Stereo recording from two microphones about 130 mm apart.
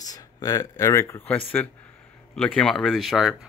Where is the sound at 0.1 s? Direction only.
30° left (ahead or behind); by 3.3 s centre (ahead or behind).